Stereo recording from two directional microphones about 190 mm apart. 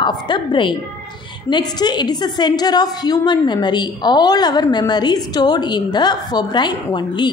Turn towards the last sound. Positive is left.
turn(degrees=20)  # may be behind; listen again after turning